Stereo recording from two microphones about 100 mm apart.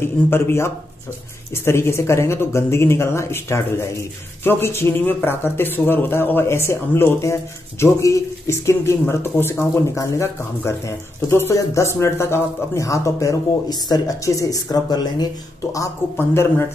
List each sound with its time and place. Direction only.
0.0 s a man's voice: 25° left (ahead or behind); by 15.2 s 40° left (ahead or behind)
15.7 s a man's voice: 30° left (ahead or behind)